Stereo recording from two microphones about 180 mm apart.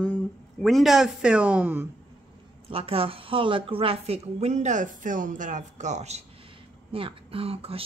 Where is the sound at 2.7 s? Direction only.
30° right (ahead or behind).